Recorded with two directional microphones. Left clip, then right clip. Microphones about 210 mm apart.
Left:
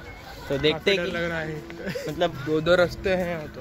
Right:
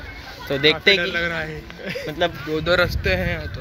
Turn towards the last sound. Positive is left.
turn(degrees=10)  # may be behind; listen again after turning